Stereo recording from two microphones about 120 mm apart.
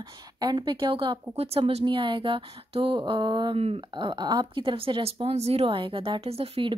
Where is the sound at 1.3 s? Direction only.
55° right (ahead or behind).